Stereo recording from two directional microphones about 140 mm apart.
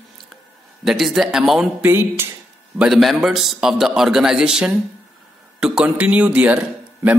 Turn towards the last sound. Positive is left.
turn(degrees=-10)  # may be behind; listen again after turning